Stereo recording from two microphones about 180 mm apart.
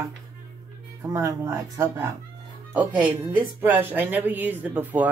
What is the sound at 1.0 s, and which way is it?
Speech, 20° right (ahead or behind).